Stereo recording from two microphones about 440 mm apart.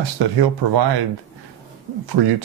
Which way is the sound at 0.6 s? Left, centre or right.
Right.